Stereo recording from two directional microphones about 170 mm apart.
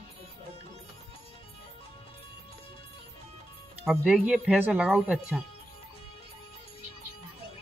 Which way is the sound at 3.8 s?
5° right (ahead or behind).